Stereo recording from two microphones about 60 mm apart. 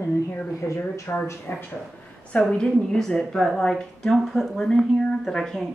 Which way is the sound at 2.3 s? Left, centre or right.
Centre.